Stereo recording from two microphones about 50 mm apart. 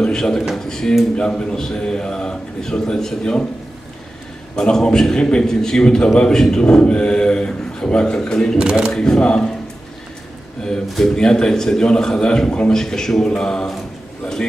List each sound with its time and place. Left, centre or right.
0.0 s a sound: centre
0.7 s a man's voice: centre
4.6 s a man's voice: centre
8.5 s speech: centre
8.9 s a man's voice: centre
10.6 s a man's voice: centre